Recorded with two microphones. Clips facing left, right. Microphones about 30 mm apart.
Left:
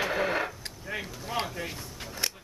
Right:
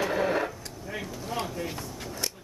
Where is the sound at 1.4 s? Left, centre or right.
Centre.